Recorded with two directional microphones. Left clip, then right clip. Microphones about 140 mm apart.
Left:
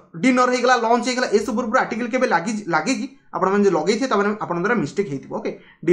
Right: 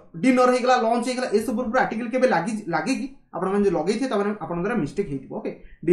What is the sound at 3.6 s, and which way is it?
Speech, 5° right (ahead or behind).